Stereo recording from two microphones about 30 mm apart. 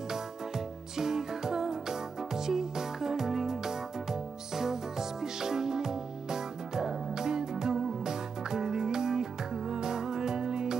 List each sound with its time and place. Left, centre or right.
0.9 s music: centre